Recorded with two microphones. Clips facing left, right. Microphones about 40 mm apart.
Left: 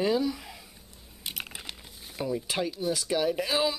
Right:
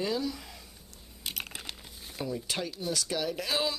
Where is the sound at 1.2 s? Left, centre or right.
Centre.